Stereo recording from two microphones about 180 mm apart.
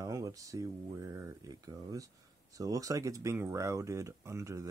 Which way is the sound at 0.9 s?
15° right (ahead or behind).